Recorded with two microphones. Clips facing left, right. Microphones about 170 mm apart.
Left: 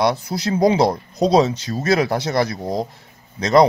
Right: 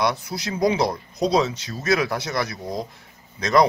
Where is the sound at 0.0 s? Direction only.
30° left (ahead or behind).